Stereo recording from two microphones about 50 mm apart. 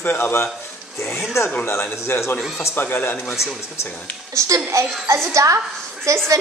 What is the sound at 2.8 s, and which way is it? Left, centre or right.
Speech, left.